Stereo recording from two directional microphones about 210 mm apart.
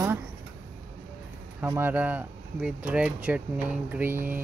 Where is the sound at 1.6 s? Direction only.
10° right (ahead or behind).